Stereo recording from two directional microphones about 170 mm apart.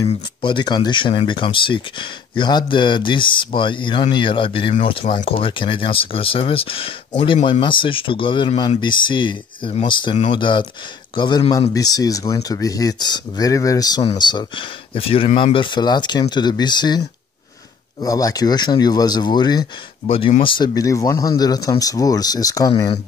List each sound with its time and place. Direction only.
0.0 s speech: 30° left (ahead or behind)
18.0 s speech: 20° left (ahead or behind)